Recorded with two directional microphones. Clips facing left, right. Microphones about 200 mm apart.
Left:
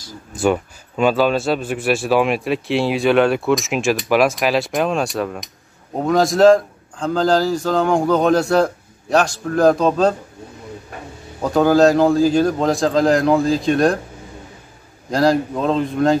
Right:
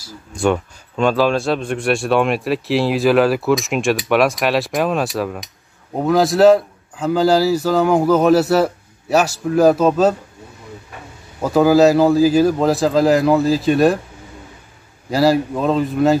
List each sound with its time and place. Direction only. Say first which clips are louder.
0.3 s speech: even; 5° left (ahead or behind)
11.4 s speech: right 1 dB; 5° right (ahead or behind)
15.0 s speech: right 1 dB; 5° right (ahead or behind)